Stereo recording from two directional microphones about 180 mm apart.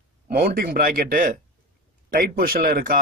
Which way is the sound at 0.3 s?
55° right (ahead or behind).